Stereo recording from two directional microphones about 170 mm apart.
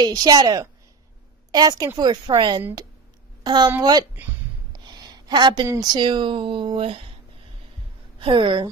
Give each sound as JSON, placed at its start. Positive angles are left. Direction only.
{"t": 0.0, "sound": "speech", "side_deg": -25}
{"t": 4.7, "sound": "a sound", "side_deg": -25}
{"t": 5.7, "sound": "speech", "side_deg": -25}
{"t": 8.2, "sound": "speech", "side_deg": -30}